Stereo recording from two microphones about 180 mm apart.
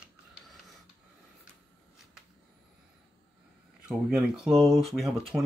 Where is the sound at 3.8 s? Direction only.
5° right (ahead or behind).